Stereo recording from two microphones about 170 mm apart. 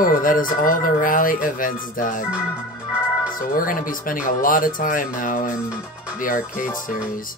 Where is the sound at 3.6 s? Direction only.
55° left (ahead or behind).